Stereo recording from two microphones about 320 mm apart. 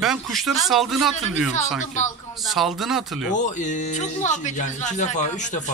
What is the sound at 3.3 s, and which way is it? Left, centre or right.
Speech, left.